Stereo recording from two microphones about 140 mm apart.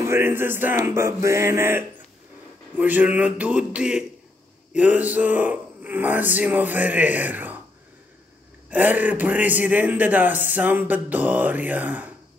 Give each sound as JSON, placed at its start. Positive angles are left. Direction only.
{"t": 0.0, "sound": "a man's voice", "side_deg": -20}
{"t": 8.6, "sound": "a man's voice", "side_deg": -10}